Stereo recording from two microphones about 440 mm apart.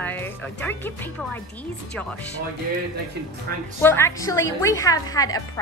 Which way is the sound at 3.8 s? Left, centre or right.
Centre.